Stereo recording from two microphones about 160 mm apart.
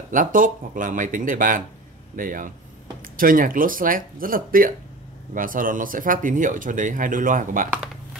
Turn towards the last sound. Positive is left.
turn(degrees=-55)  # may be behind; listen again after turning